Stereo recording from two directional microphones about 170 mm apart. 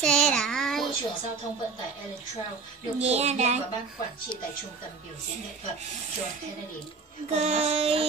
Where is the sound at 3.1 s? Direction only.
40° right (ahead or behind).